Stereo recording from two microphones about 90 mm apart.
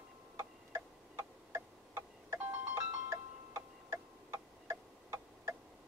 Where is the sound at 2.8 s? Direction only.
35° right (ahead or behind).